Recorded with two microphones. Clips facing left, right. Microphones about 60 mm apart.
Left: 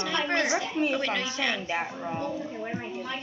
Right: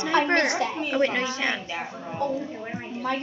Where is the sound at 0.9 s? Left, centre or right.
Right.